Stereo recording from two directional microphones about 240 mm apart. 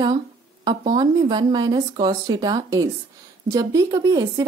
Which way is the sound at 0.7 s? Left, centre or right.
Centre.